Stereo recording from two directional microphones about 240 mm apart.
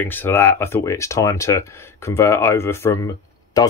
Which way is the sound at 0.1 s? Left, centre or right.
Centre.